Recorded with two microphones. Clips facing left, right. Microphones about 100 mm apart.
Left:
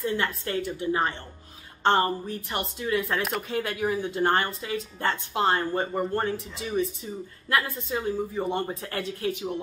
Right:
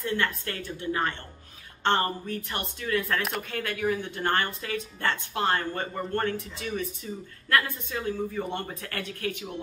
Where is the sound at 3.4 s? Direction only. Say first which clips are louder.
Left 1 dB; 20° left (ahead or behind).